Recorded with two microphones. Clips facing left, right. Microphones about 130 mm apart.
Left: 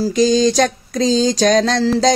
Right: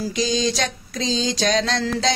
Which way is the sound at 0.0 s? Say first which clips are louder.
Left 8 dB; 45° left (ahead or behind).